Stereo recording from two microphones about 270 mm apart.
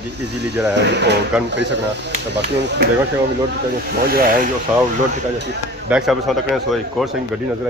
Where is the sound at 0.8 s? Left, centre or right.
Right.